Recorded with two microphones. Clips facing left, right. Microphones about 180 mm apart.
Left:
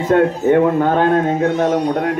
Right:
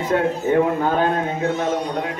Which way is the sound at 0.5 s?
65° left (ahead or behind).